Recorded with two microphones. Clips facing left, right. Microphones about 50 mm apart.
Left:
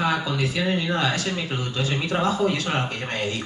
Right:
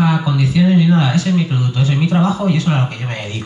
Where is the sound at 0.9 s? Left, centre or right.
Right.